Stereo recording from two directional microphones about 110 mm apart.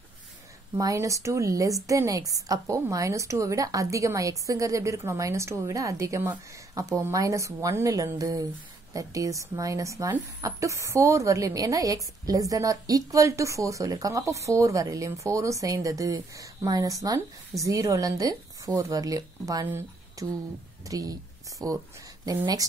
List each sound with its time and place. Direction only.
0.7 s a woman's voice: 30° right (ahead or behind)